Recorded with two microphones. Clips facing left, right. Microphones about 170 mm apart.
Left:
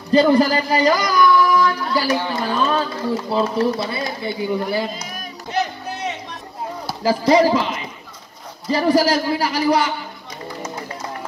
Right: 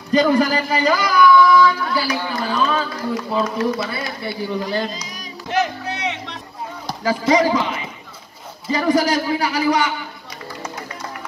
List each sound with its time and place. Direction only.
0.1 s speech: 30° left (ahead or behind)
2.0 s speech: 20° left (ahead or behind)
4.2 s speech: 15° left (ahead or behind)
4.6 s speech: 5° left (ahead or behind)
4.9 s speech: 55° left (ahead or behind)
5.9 s vehicle: 70° right (ahead or behind)
7.0 s a man's voice: 30° left (ahead or behind)
8.6 s a man's voice: 30° left (ahead or behind)